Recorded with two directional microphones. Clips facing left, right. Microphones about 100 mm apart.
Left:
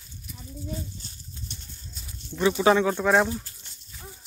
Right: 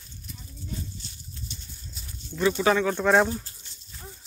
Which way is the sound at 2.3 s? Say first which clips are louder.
Left 1 dB; 5° left (ahead or behind).